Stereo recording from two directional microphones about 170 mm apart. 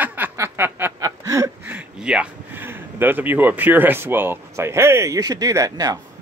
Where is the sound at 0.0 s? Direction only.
10° right (ahead or behind).